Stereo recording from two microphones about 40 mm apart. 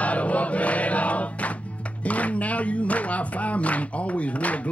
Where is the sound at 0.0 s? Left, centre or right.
Left.